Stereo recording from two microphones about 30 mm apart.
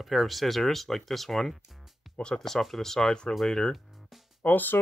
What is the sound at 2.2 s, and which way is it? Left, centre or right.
Speech, left.